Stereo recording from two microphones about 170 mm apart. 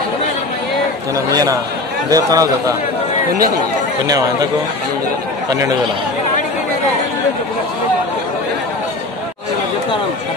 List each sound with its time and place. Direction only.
1.1 s a man's voice: 20° right (ahead or behind)
5.5 s a man's voice: 20° right (ahead or behind)